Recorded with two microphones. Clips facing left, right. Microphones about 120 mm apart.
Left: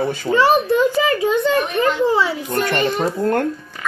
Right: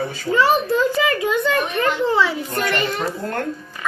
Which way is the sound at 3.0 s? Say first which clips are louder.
Left 6 dB; 45° left (ahead or behind).